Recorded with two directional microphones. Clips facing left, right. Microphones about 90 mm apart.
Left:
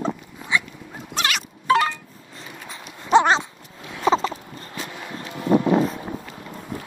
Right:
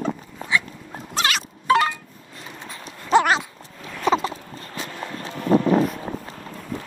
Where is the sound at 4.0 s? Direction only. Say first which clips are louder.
Left 1 dB; 30° left (ahead or behind).